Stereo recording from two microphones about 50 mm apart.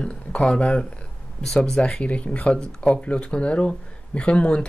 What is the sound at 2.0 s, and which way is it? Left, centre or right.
Speech, left.